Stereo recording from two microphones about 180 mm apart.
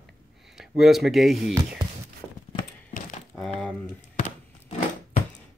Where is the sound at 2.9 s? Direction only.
45° left (ahead or behind).